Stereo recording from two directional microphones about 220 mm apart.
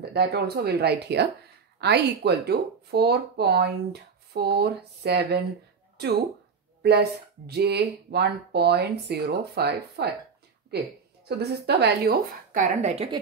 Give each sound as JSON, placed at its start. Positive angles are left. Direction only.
{"t": 0.1, "sound": "speech", "side_deg": -45}
{"t": 6.8, "sound": "speech", "side_deg": -50}
{"t": 11.2, "sound": "speech", "side_deg": -50}